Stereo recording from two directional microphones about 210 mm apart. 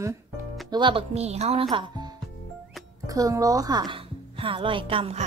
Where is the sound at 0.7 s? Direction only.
20° right (ahead or behind).